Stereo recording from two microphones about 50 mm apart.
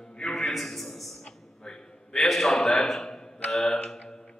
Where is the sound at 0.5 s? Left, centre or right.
Centre.